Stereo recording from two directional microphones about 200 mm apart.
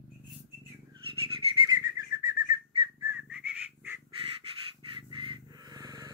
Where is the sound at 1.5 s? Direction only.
20° right (ahead or behind).